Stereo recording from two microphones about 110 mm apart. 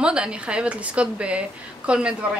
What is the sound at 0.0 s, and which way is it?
A woman's voice, 10° right (ahead or behind).